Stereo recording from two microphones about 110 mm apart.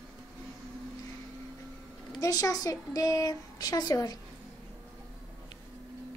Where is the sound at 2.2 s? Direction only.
30° left (ahead or behind).